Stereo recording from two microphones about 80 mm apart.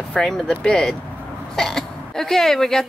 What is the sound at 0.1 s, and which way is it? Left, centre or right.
Speech, centre.